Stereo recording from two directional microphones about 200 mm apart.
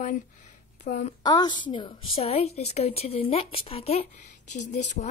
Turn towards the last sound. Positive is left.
turn(degrees=35)  # may be behind; listen again after turning